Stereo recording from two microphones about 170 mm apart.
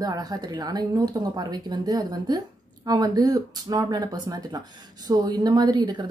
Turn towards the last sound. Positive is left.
turn(degrees=-25)  # may be behind; listen again after turning